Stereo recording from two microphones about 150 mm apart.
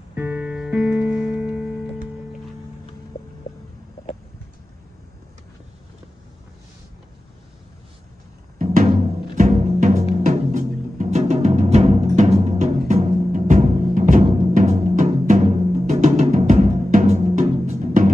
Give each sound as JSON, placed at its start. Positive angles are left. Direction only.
{"t": 0.1, "sound": "music", "side_deg": -15}
{"t": 8.5, "sound": "timpani", "side_deg": -60}